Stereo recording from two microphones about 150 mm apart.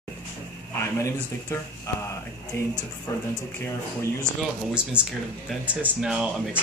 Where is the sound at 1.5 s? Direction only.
20° left (ahead or behind).